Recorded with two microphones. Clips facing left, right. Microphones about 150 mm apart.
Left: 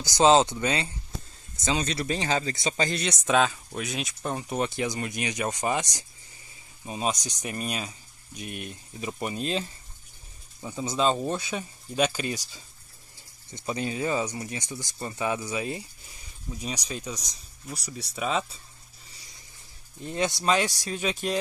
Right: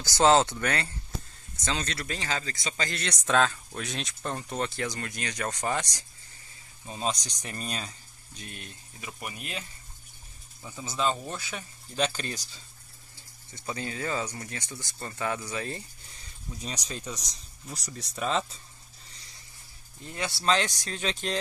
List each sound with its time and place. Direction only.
0.0 s speech: 15° left (ahead or behind)
20.0 s speech: 20° left (ahead or behind)